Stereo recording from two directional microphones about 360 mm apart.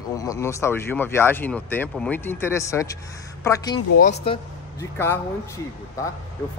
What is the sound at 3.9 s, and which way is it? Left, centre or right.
Speech, left.